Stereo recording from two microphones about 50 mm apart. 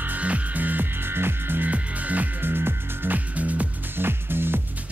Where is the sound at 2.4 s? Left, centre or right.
Right.